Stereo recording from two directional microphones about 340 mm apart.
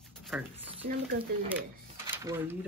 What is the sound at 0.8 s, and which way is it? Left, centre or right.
Speech, right.